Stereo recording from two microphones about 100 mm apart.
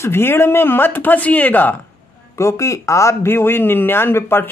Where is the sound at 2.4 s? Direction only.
30° left (ahead or behind).